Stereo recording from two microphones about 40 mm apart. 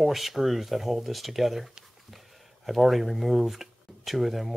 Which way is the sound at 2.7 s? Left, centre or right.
Centre.